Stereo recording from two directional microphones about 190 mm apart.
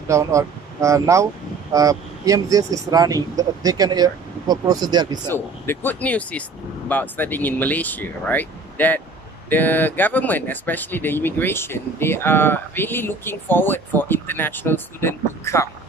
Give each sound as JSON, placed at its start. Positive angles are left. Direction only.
{"t": 0.1, "sound": "speech", "side_deg": -15}
{"t": 5.3, "sound": "speech", "side_deg": 10}